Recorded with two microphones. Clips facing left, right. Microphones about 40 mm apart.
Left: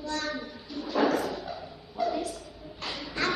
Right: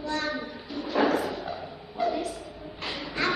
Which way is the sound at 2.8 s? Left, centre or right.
Centre.